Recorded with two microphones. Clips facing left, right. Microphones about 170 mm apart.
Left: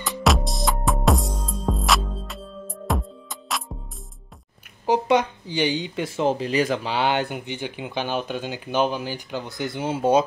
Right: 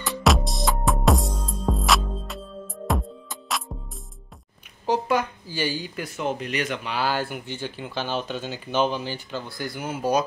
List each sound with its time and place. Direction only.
0.2 s music: centre (ahead or behind)
4.8 s speech: 15° left (ahead or behind)